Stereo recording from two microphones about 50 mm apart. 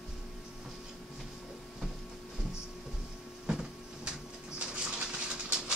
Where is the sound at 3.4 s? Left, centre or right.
Centre.